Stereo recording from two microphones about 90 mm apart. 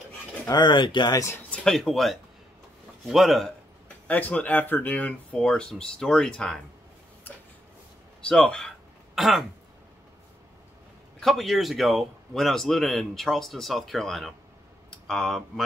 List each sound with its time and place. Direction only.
0.5 s speech: 55° left (ahead or behind)
1.5 s speech: 5° left (ahead or behind)
4.1 s speech: 20° left (ahead or behind)
7.3 s a sound: 20° left (ahead or behind)
8.3 s a sound: 10° left (ahead or behind)
11.1 s speech: 5° left (ahead or behind)